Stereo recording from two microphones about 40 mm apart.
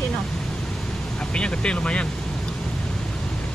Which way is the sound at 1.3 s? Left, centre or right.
Left.